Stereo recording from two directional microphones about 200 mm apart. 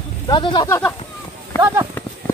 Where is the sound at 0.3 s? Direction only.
20° left (ahead or behind).